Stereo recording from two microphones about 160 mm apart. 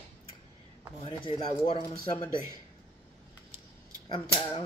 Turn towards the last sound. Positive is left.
turn(degrees=35)  # may be behind; listen again after turning